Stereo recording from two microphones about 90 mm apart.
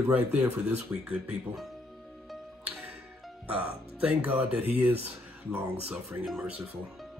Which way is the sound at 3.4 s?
15° right (ahead or behind).